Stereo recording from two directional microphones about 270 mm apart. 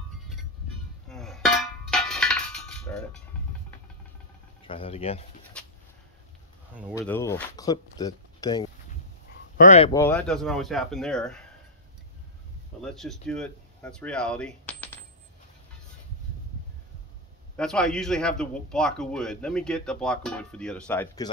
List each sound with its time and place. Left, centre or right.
1.0 s chink: centre
4.6 s speech: left
5.5 s a sound: centre
7.0 s speech: centre
9.6 s speech: left
9.9 s a man's voice: centre
12.8 s speech: centre
17.6 s a man's voice: centre